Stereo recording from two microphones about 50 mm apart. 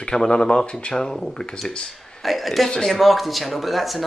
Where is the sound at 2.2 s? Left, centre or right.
Centre.